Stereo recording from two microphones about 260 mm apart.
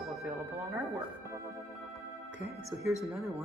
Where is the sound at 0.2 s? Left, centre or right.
Centre.